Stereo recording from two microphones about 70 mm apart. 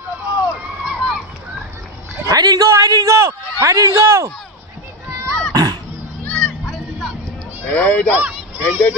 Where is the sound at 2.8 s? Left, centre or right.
Right.